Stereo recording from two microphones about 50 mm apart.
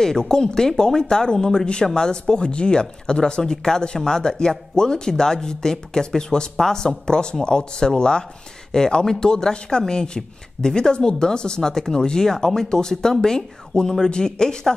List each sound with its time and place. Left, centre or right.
0.0 s speech: centre